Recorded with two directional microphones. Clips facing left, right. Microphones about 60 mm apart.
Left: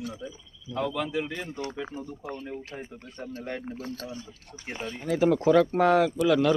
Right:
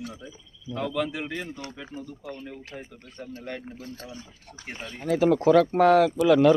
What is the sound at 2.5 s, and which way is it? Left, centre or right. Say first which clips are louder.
Speech: left 2 dB; centre.